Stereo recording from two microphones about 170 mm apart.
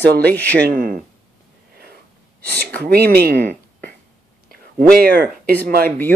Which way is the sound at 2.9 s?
65° right (ahead or behind).